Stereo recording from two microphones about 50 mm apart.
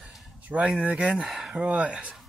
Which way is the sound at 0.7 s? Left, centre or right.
Right.